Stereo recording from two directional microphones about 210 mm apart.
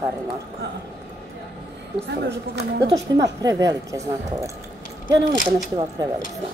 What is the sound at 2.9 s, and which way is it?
A woman's voice, 15° right (ahead or behind).